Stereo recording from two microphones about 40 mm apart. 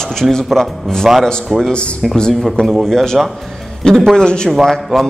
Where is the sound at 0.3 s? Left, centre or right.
Centre.